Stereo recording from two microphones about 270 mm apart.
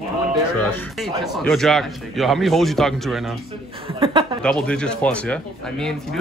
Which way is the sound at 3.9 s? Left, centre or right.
Centre.